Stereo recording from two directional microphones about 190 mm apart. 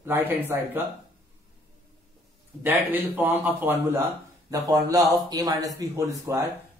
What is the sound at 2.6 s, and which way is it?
A man's voice, 10° right (ahead or behind).